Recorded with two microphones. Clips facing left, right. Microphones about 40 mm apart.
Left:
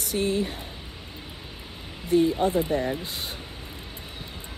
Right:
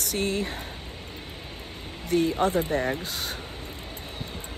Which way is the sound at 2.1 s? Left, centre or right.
Right.